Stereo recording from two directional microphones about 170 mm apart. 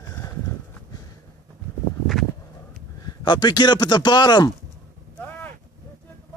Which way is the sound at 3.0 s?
25° left (ahead or behind).